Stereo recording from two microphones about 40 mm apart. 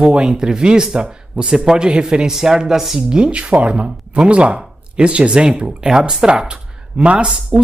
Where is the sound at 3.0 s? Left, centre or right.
Right.